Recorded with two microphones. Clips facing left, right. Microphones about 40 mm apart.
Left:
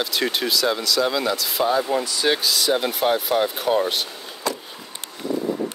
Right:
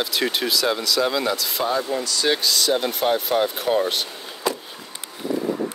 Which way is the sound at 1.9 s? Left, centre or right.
Centre.